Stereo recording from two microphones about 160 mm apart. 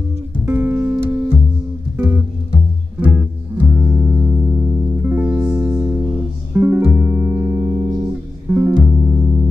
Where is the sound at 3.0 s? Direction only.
10° right (ahead or behind).